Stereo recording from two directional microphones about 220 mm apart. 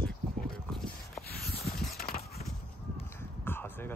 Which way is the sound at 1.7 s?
45° left (ahead or behind).